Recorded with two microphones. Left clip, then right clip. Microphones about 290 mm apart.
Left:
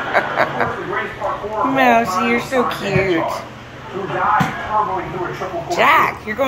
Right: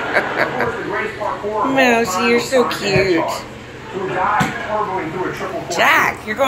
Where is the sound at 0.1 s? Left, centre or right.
Centre.